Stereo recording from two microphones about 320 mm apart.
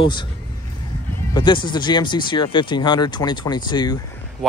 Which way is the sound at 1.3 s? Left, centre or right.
Centre.